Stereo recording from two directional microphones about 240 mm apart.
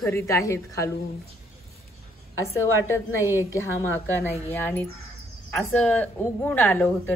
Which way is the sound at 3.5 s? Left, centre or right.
Centre.